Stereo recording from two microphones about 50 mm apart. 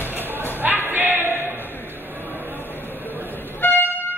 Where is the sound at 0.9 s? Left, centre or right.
Right.